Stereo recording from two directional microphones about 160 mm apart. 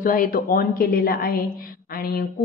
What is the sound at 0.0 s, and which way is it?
A woman's voice, 60° left (ahead or behind).